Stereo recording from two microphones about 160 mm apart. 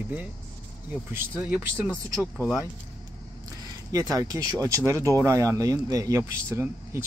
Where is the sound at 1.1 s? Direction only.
10° right (ahead or behind).